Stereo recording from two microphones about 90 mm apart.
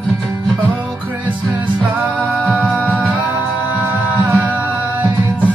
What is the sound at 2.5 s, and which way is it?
Music, 15° right (ahead or behind).